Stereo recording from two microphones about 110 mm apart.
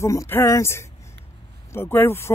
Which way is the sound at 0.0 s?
25° left (ahead or behind).